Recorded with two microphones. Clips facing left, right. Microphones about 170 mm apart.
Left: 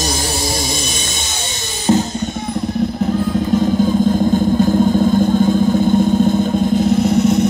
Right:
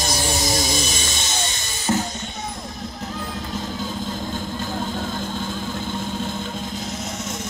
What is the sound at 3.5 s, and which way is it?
Vehicle, 55° left (ahead or behind).